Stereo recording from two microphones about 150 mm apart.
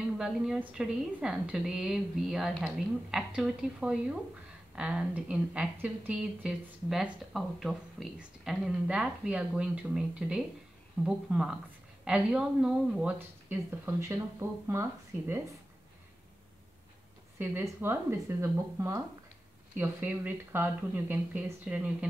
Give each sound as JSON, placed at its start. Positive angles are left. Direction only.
{"t": 0.2, "sound": "speech", "side_deg": -5}
{"t": 17.4, "sound": "speech", "side_deg": -15}